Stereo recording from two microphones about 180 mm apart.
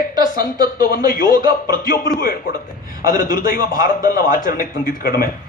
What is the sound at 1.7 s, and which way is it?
A man's voice, 60° left (ahead or behind).